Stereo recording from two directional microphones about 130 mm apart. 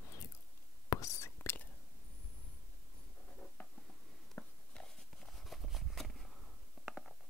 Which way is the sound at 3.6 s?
15° left (ahead or behind).